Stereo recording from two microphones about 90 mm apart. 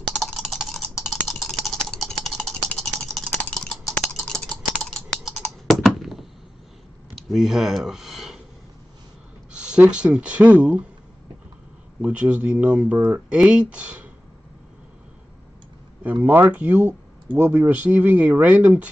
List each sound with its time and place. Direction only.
0.1 s typing: centre (ahead or behind)
3.6 s a sound: centre (ahead or behind)
4.2 s typing: 5° left (ahead or behind)
5.4 s computer keyboard: centre (ahead or behind)
7.2 s a sound: centre (ahead or behind)
9.5 s speech: 10° right (ahead or behind)
12.0 s speech: 15° right (ahead or behind)
16.0 s speech: 15° right (ahead or behind)